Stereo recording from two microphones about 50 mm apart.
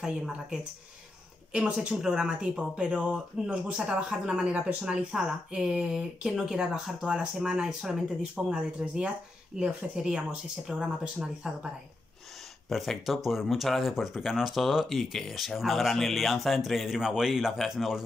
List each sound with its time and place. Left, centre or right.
1.5 s speech: centre
4.5 s speech: right
5.1 s speech: centre
12.6 s speech: centre